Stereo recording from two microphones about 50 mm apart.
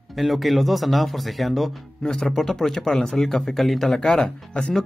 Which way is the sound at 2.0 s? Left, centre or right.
Centre.